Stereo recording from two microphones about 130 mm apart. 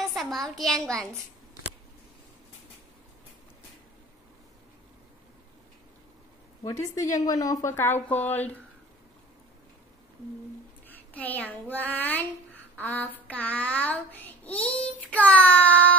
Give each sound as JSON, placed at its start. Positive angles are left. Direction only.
{"t": 0.0, "sound": "a child's voice", "side_deg": 0}
{"t": 6.6, "sound": "a woman's voice", "side_deg": 25}
{"t": 10.9, "sound": "a child's voice", "side_deg": 15}
{"t": 12.7, "sound": "a sound", "side_deg": 15}
{"t": 13.3, "sound": "child singing", "side_deg": 10}